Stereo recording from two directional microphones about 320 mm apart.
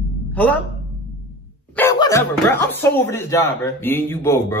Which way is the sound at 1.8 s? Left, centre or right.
Centre.